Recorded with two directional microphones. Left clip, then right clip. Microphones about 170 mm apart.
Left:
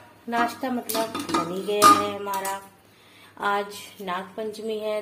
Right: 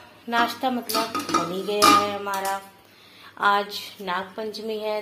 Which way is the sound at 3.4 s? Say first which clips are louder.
Right 4 dB; 15° left (ahead or behind).